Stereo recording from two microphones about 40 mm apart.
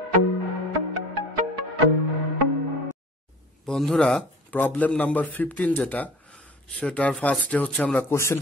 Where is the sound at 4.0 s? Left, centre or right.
Centre.